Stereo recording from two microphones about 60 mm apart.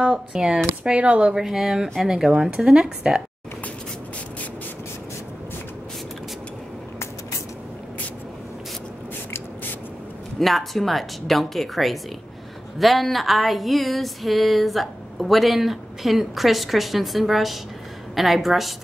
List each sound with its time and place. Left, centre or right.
0.0 s speech: centre
1.3 s speech: centre
10.4 s a sound: centre